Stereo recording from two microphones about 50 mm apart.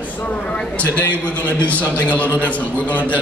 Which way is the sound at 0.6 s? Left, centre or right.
Left.